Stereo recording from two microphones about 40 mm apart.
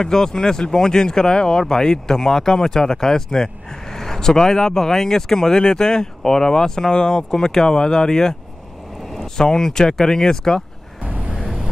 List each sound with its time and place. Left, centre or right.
0.0 s speech: centre
11.1 s vehicle: right